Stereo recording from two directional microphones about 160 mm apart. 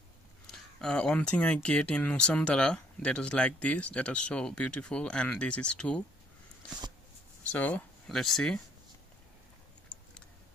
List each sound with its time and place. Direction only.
0.5 s speech: 5° left (ahead or behind)
7.5 s speech: 10° left (ahead or behind)